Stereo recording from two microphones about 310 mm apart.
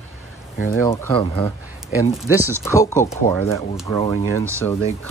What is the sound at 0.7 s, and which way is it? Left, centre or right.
Speech, centre.